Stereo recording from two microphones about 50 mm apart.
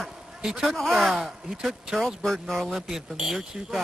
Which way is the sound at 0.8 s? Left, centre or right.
Centre.